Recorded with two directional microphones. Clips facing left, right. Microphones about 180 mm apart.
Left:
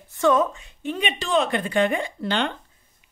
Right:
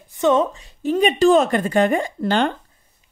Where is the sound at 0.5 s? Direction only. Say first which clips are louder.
Right 8 dB; 35° right (ahead or behind).